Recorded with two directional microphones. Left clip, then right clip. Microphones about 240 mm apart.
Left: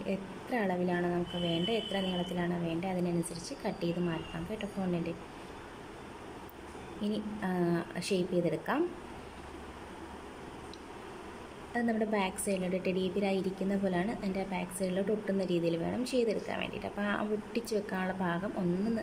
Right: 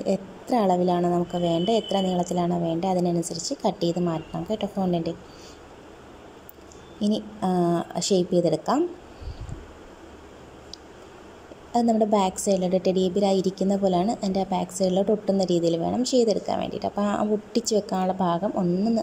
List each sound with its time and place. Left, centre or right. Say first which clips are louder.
0.0 s a woman's voice: right 11 dB; right
7.0 s a woman's voice: right 10 dB; right
11.7 s a woman's voice: right 11 dB; right